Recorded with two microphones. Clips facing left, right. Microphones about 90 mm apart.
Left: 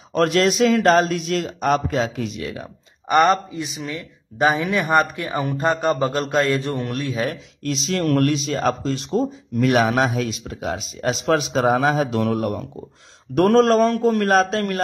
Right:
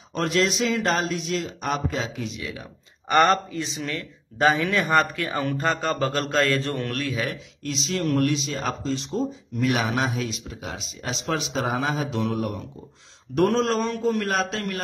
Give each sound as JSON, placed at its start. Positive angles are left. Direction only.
{"t": 0.1, "sound": "speech", "side_deg": 60}
{"t": 3.3, "sound": "speech", "side_deg": 10}
{"t": 7.2, "sound": "a man's voice", "side_deg": 45}
{"t": 7.9, "sound": "speech", "side_deg": 60}
{"t": 11.2, "sound": "a man's voice", "side_deg": 60}